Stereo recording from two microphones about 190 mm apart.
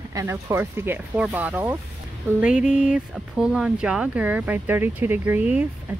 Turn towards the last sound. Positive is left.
turn(degrees=-5)  # may be behind; listen again after turning